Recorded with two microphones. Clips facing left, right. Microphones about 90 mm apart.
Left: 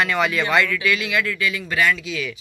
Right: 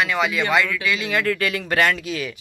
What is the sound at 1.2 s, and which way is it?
Speech, 55° right (ahead or behind).